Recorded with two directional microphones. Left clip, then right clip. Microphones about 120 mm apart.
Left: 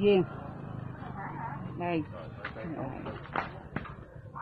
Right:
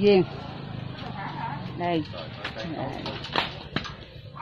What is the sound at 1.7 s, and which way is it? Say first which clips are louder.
Speech: right 6 dB; 5° right (ahead or behind).